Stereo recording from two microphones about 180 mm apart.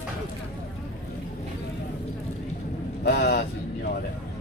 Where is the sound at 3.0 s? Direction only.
60° left (ahead or behind).